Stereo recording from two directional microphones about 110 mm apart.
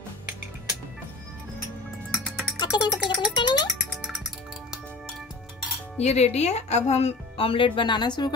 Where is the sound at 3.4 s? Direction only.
40° left (ahead or behind).